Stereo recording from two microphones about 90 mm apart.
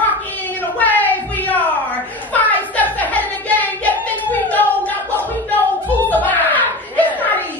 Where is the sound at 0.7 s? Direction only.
20° left (ahead or behind).